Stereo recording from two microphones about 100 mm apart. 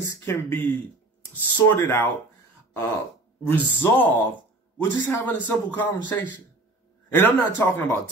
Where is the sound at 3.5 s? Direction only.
20° left (ahead or behind).